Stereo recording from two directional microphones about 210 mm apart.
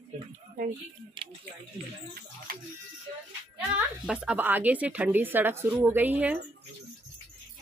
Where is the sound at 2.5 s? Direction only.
45° right (ahead or behind).